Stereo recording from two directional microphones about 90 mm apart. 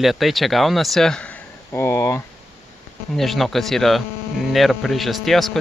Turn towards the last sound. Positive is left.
turn(degrees=0)  # may be behind; listen again after turning